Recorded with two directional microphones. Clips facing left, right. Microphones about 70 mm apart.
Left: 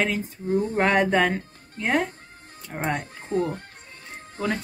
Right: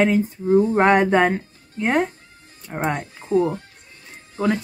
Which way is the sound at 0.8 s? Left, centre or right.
Right.